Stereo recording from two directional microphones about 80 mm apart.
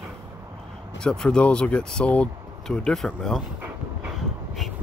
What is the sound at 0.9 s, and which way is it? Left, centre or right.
Speech, centre.